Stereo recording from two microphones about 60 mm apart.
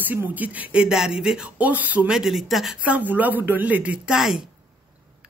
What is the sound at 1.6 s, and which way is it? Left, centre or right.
Speech, right.